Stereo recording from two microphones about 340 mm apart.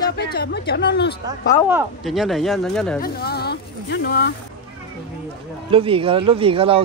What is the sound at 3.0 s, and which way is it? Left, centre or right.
Speech, left.